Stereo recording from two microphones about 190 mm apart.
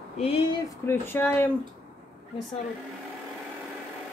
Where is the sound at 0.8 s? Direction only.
10° left (ahead or behind).